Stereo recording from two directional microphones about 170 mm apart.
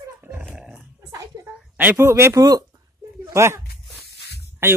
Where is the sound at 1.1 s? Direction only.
15° right (ahead or behind).